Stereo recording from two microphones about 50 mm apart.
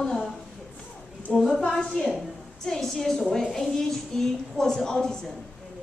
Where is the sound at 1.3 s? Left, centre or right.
Left.